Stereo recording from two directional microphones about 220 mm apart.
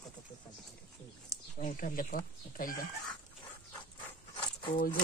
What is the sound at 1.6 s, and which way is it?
Speech, 40° left (ahead or behind).